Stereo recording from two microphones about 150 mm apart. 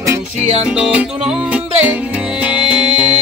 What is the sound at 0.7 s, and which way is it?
Music, 5° right (ahead or behind).